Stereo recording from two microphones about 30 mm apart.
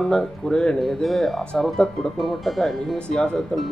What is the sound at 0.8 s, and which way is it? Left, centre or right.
Speech, centre.